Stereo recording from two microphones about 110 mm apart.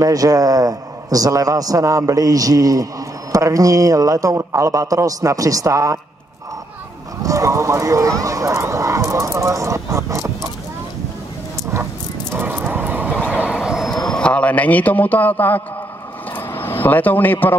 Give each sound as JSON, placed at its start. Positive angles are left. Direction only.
{"t": 0.0, "sound": "a man's voice", "side_deg": -35}
{"t": 7.2, "sound": "speech", "side_deg": -30}
{"t": 12.3, "sound": "dog", "side_deg": -15}
{"t": 13.3, "sound": "a sound", "side_deg": -10}
{"t": 16.3, "sound": "vehicle", "side_deg": 20}